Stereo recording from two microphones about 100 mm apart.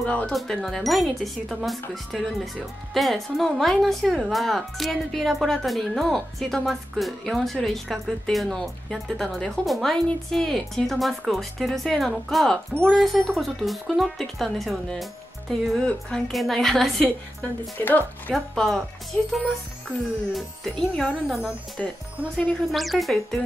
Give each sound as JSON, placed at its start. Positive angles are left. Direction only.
{"t": 0.0, "sound": "speech", "side_deg": 10}
{"t": 0.3, "sound": "speech", "side_deg": 0}
{"t": 17.0, "sound": "a woman's voice", "side_deg": 15}
{"t": 18.3, "sound": "speech", "side_deg": 0}
{"t": 20.3, "sound": "speech", "side_deg": 5}